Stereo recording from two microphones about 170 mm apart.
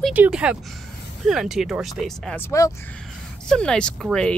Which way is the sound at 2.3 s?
15° left (ahead or behind).